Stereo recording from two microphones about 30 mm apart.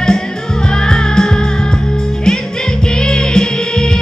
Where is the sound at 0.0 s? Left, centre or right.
Left.